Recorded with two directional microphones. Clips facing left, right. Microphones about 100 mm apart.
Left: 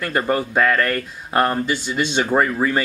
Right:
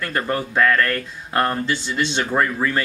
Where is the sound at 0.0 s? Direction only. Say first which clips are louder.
Left 3 dB; 10° left (ahead or behind).